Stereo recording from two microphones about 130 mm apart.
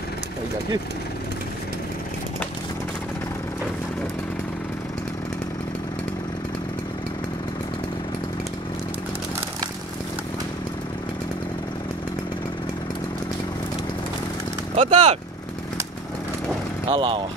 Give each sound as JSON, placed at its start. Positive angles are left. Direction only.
{"t": 14.8, "sound": "speech", "side_deg": -65}
{"t": 16.8, "sound": "speech", "side_deg": -40}